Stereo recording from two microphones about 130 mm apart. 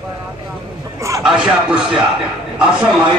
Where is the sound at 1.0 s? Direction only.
25° right (ahead or behind).